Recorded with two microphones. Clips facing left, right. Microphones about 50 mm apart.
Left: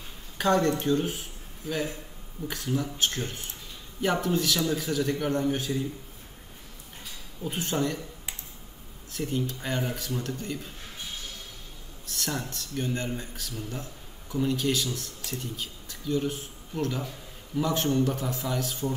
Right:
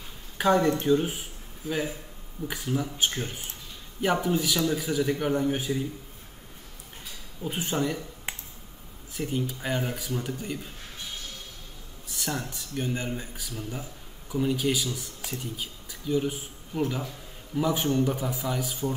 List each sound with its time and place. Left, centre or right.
0.4 s a man's voice: centre
7.4 s a man's voice: centre
8.3 s a sound: right
9.1 s a man's voice: centre
12.1 s a man's voice: centre